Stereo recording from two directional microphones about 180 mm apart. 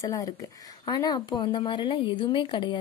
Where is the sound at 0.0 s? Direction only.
20° left (ahead or behind).